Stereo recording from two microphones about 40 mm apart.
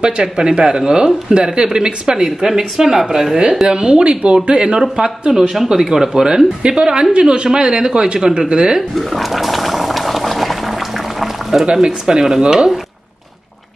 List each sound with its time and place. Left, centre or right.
0.0 s speech: centre
3.6 s speech: right
5.5 s speech: centre
8.9 s boiling: centre
11.7 s speech: centre